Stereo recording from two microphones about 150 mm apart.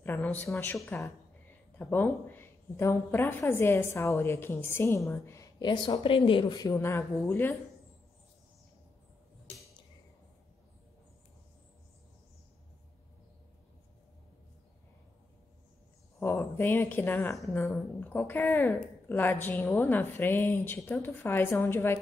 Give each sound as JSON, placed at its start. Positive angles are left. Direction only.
{"t": 0.0, "sound": "a woman's voice", "side_deg": 15}
{"t": 5.6, "sound": "speech", "side_deg": 30}
{"t": 16.2, "sound": "speech", "side_deg": 15}